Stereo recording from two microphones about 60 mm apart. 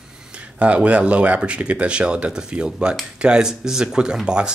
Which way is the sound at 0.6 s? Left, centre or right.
Right.